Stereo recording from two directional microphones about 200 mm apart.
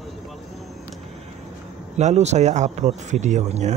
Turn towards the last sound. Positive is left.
turn(degrees=-35)  # may be behind; listen again after turning